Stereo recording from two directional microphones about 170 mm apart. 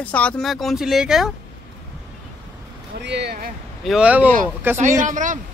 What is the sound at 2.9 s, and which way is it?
Speech, 85° right.